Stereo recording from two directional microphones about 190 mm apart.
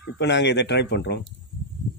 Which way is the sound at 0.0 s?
65° left (ahead or behind).